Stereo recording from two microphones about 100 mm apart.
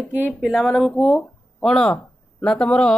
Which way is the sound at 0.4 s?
5° right (ahead or behind).